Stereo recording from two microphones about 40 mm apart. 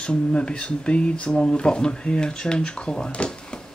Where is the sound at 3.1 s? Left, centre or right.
Left.